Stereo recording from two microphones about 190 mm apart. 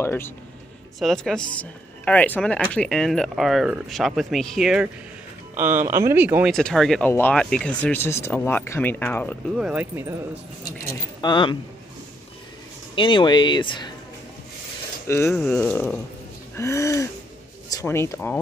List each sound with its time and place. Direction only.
0.0 s speech: 10° left (ahead or behind)
0.9 s speech: centre (ahead or behind)
6.5 s speech: centre (ahead or behind)
9.6 s speech: 5° right (ahead or behind)
11.1 s speech: 25° left (ahead or behind)
12.9 s speech: 25° left (ahead or behind)
15.0 s speech: 15° left (ahead or behind)